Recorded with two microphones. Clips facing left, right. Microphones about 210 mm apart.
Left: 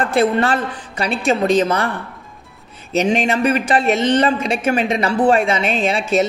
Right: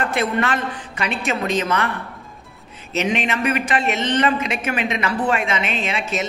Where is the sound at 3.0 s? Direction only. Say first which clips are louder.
Left 5 dB; 35° left (ahead or behind).